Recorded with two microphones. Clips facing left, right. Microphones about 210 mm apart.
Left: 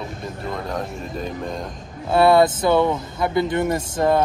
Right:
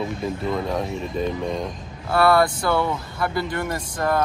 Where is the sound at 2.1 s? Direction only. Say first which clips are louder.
Left 3 dB; 20° left (ahead or behind).